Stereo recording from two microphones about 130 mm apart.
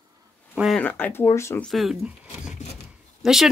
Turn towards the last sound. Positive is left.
turn(degrees=-5)  # may be behind; listen again after turning